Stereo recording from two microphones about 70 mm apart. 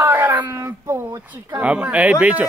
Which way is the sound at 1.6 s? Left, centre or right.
Centre.